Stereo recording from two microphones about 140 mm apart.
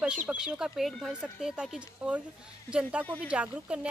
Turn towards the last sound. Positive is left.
turn(degrees=-10)  # may be behind; listen again after turning